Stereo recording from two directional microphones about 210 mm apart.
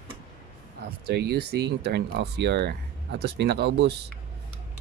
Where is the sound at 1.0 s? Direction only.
50° right (ahead or behind).